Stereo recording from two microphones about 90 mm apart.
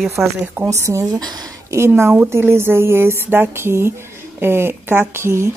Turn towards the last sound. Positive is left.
turn(degrees=-30)  # may be behind; listen again after turning